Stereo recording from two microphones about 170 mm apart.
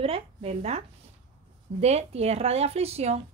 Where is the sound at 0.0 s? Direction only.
35° right (ahead or behind).